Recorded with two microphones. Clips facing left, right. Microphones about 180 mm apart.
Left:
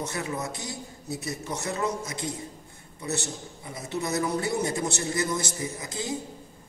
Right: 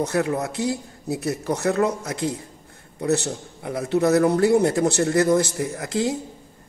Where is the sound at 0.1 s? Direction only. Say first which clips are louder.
Right 9 dB; 65° right (ahead or behind).